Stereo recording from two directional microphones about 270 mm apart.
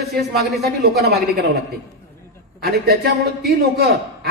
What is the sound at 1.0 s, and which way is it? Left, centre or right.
Speech, right.